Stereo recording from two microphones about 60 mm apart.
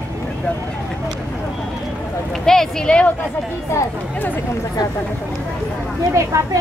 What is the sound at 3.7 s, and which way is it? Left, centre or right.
Speech, left.